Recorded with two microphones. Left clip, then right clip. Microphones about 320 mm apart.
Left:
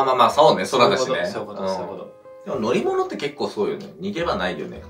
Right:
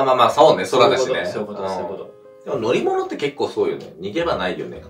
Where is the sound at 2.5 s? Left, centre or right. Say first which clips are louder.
Right 2 dB; centre.